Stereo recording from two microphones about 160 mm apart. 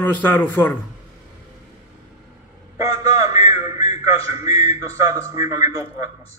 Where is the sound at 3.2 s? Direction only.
20° right (ahead or behind).